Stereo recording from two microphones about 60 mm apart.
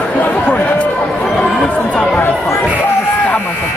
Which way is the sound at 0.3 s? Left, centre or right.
Left.